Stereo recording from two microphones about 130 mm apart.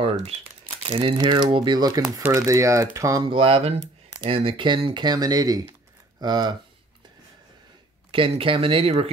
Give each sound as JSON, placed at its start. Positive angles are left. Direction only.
{"t": 0.8, "sound": "speech", "side_deg": -45}
{"t": 3.3, "sound": "speech", "side_deg": -45}
{"t": 8.1, "sound": "speech", "side_deg": -45}